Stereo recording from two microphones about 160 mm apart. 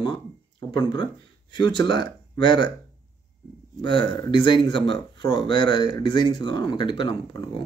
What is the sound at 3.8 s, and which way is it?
Speech, 30° left (ahead or behind).